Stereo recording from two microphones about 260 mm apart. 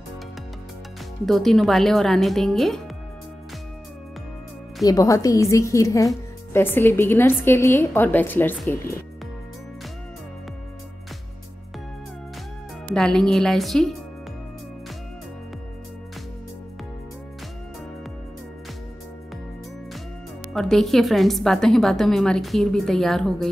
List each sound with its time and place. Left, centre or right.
1.2 s a woman's voice: centre
4.8 s a woman's voice: centre
12.9 s a woman's voice: centre
20.5 s a woman's voice: centre